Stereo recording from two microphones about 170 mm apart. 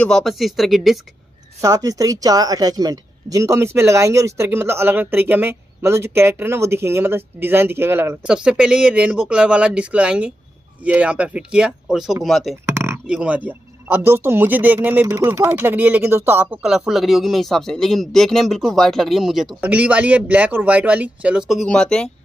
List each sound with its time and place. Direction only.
0.0 s speech: centre (ahead or behind)
1.6 s speech: 20° right (ahead or behind); by 12.5 s centre (ahead or behind)
12.6 s a sound: 15° right (ahead or behind)
13.0 s speech: 5° right (ahead or behind)